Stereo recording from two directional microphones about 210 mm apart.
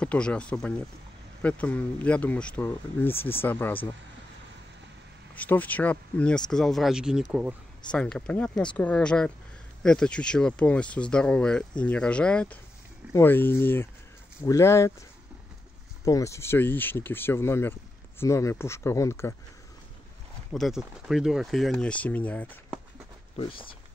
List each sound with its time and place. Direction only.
0.0 s speech: 5° left (ahead or behind)
5.3 s speech: 5° left (ahead or behind)
20.5 s speech: centre (ahead or behind)
23.3 s speech: 25° left (ahead or behind)